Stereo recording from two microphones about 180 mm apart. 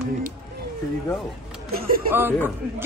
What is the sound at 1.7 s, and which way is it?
Speech, 55° right (ahead or behind).